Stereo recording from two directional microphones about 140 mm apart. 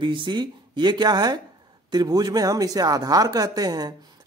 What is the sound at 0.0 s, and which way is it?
Speech, 35° right (ahead or behind).